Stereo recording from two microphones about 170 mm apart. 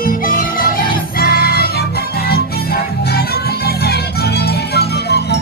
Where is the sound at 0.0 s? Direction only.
55° left (ahead or behind).